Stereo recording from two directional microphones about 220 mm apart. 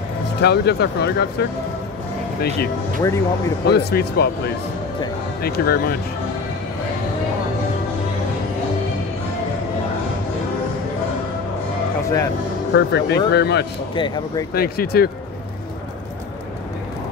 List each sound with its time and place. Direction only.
0.4 s speech: 50° left (ahead or behind)
3.0 s speech: 15° left (ahead or behind)
3.6 s speech: 45° left (ahead or behind)
5.4 s speech: 45° left (ahead or behind)
12.7 s speech: 50° left (ahead or behind)
13.9 s speech: 20° left (ahead or behind)
14.5 s speech: 45° left (ahead or behind)